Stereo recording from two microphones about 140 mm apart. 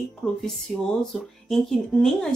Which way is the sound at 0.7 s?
Centre (ahead or behind).